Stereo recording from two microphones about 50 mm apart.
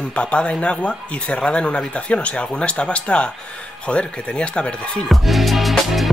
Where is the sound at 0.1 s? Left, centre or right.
Left.